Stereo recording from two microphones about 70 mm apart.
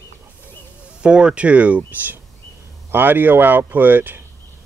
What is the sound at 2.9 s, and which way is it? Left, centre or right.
Speech, right.